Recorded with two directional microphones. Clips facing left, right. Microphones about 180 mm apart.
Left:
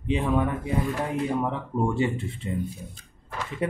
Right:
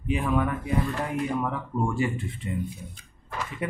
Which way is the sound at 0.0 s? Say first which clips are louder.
Left 1 dB; 25° left (ahead or behind).